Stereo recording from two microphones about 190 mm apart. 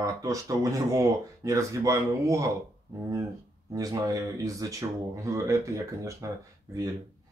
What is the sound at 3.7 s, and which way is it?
Speech, 20° right (ahead or behind).